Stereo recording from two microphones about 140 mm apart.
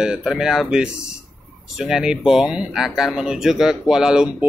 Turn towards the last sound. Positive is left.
turn(degrees=-5)  # may be behind; listen again after turning